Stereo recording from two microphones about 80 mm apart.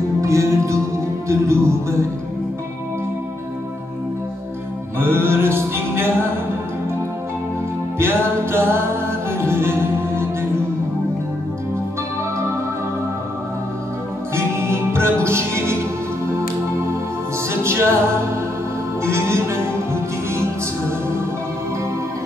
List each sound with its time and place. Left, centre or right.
0.2 s music: right
4.9 s music: right
8.0 s music: right
14.3 s music: right
17.5 s music: right
19.0 s music: right